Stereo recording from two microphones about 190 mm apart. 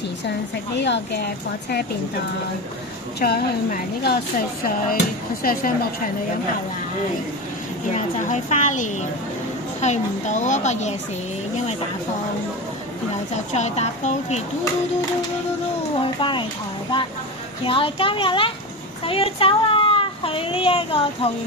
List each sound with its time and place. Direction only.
0.7 s a woman's voice: 65° left (ahead or behind)
3.2 s a woman's voice: 55° left (ahead or behind)
7.9 s a woman's voice: 40° left (ahead or behind)
13.5 s a woman's voice: 35° left (ahead or behind)
16.0 s a child's voice: 25° left (ahead or behind)
17.6 s a child's voice: 25° left (ahead or behind)